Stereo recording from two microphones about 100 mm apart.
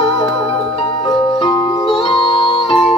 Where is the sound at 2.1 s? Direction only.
60° left (ahead or behind).